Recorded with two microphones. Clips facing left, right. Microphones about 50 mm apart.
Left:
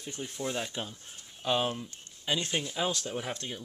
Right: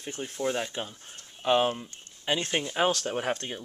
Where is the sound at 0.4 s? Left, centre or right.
Centre.